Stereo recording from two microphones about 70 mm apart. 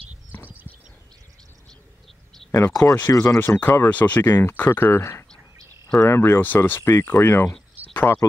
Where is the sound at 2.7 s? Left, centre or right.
Left.